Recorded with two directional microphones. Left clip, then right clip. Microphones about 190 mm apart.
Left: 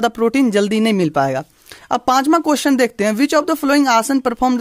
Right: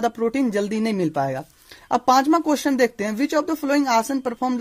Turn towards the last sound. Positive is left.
turn(degrees=40)  # may be behind; listen again after turning